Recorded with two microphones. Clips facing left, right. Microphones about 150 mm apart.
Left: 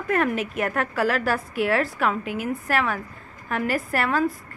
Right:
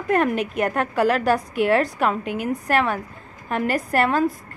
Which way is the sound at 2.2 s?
5° left (ahead or behind).